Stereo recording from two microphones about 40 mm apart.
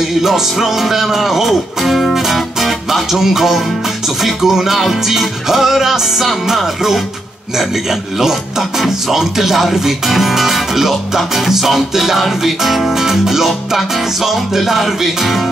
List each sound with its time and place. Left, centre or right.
0.2 s speech: centre
12.2 s music: centre